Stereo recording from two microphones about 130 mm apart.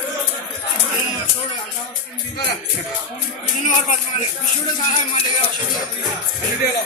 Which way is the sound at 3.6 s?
65° left (ahead or behind).